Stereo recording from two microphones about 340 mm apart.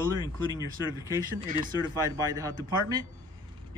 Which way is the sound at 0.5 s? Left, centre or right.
Centre.